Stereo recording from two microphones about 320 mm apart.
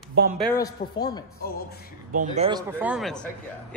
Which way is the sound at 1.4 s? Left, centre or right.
Left.